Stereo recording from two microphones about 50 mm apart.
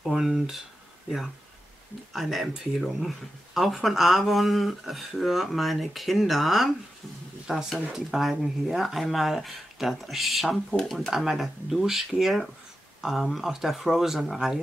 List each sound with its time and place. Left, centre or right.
0.0 s speech: centre
2.1 s speech: centre